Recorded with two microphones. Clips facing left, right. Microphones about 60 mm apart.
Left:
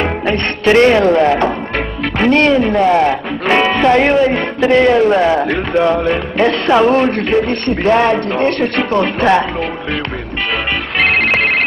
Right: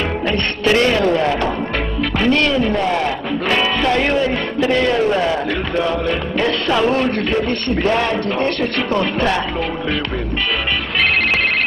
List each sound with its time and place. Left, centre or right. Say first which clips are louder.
0.3 s speech: left 5 dB; left